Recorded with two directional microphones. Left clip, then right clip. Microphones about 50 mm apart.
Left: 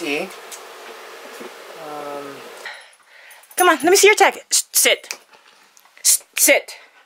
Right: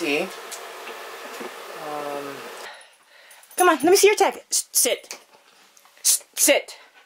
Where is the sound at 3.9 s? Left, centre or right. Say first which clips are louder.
Left 4 dB; left.